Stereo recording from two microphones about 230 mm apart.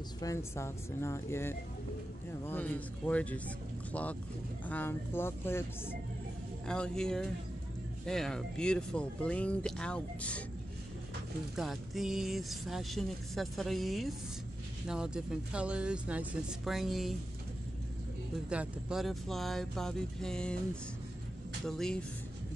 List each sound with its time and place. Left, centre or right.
0.2 s speech: centre
6.7 s speech: centre
11.5 s speech: centre
18.5 s speech: centre
21.6 s speech: centre